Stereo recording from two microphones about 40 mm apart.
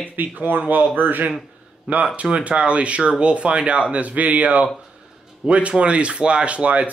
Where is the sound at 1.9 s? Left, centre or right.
Right.